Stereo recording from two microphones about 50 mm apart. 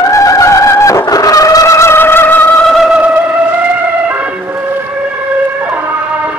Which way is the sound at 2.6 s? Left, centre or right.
Centre.